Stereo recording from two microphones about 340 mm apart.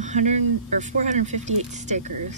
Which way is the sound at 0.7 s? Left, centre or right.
Right.